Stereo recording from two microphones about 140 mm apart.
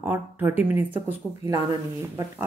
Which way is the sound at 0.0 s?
15° right (ahead or behind).